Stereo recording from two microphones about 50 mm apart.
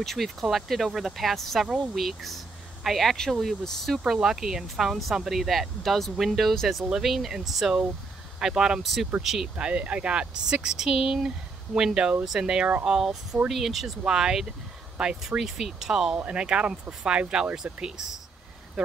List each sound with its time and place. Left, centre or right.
0.0 s speech: centre
4.1 s speech: centre
9.6 s speech: centre
16.3 s speech: centre